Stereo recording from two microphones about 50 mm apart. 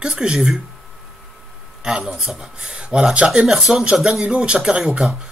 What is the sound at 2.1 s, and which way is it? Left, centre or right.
Speech, centre.